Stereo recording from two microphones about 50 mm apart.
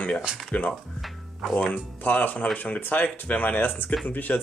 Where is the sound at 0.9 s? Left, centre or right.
Centre.